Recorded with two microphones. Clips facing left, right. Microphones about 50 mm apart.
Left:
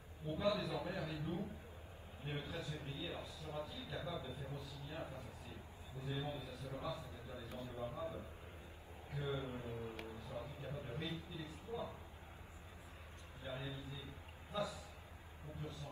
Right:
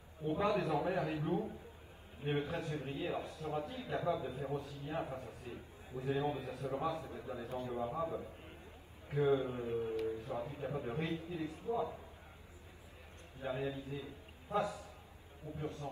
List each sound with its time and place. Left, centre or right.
0.2 s a man's voice: right
13.4 s a man's voice: right
14.5 s a man's voice: right